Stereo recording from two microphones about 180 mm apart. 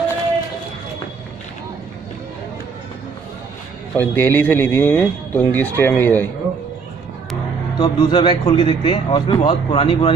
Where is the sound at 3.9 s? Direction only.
10° left (ahead or behind).